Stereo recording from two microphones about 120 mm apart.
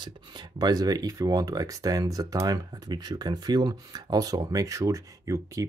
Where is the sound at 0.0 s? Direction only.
40° right (ahead or behind).